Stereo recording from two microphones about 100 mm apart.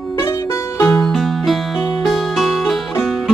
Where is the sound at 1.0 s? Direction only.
5° left (ahead or behind).